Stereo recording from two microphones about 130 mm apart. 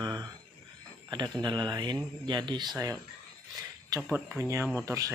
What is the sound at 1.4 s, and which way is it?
Speech, 35° right (ahead or behind).